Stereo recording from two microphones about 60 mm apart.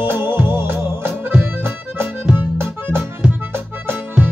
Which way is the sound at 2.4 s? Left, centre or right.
Right.